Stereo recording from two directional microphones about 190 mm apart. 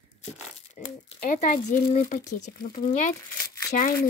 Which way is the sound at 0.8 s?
45° left (ahead or behind).